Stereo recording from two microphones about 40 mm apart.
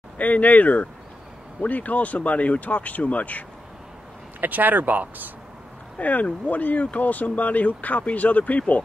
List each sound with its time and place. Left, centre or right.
0.2 s speech: left
4.4 s speech: right
5.9 s speech: left